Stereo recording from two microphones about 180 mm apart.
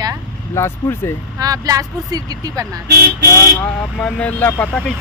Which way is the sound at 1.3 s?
20° right (ahead or behind).